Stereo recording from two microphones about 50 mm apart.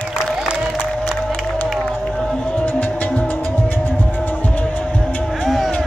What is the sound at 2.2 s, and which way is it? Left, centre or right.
Music, centre.